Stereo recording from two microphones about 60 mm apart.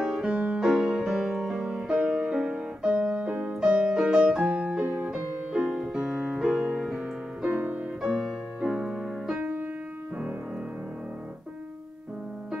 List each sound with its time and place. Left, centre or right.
0.0 s music: centre; by 3.5 s right
3.6 s music: centre
6.1 s piano: centre
6.4 s music: centre
7.5 s music: right
8.0 s music: centre
9.4 s music: right